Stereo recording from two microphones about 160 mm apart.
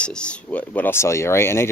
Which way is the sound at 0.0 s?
5° left (ahead or behind).